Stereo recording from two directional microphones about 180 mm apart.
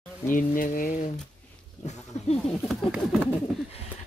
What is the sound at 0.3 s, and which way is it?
Speech, 50° left (ahead or behind).